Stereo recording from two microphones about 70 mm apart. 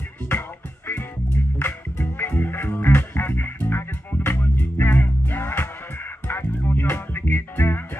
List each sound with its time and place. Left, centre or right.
0.8 s music: left